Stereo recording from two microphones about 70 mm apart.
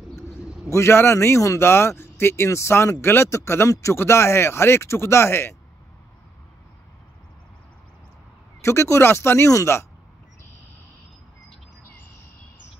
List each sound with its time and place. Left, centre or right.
0.7 s speech: left
8.5 s speech: left